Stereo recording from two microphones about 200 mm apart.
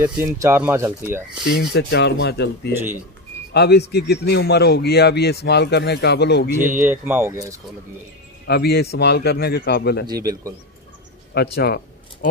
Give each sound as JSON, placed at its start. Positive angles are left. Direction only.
{"t": 0.0, "sound": "speech", "side_deg": -10}
{"t": 1.4, "sound": "a man's voice", "side_deg": 55}
{"t": 6.8, "sound": "speech", "side_deg": -10}
{"t": 8.5, "sound": "a man's voice", "side_deg": 55}
{"t": 10.0, "sound": "speech", "side_deg": -15}
{"t": 11.3, "sound": "speech", "side_deg": 55}